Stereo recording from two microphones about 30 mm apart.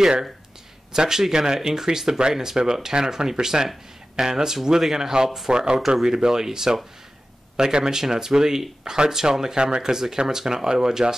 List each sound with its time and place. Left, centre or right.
0.9 s speech: centre
5.8 s speech: centre
6.0 s speech: right